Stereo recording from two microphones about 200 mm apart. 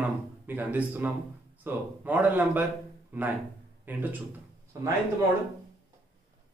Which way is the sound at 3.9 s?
10° right (ahead or behind).